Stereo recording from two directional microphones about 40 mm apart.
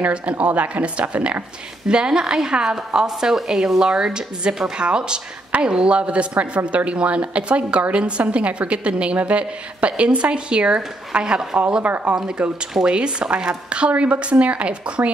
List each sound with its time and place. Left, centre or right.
0.1 s speech: right
1.9 s a woman's voice: right
3.8 s a woman's voice: centre
11.8 s speech: right
12.8 s a woman's voice: right